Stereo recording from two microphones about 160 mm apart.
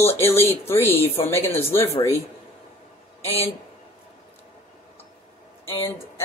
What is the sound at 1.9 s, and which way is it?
Speech, 40° left (ahead or behind).